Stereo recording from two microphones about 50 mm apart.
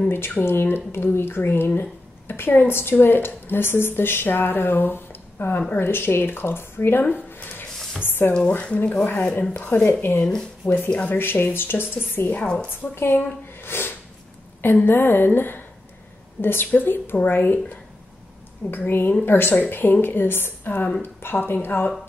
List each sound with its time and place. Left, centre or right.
0.4 s a woman's voice: left
8.3 s speech: left
11.1 s a woman's voice: left